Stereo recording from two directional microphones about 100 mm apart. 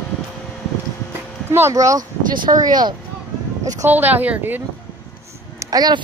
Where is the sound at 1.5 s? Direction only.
25° right (ahead or behind); by 3.0 s 45° right (ahead or behind).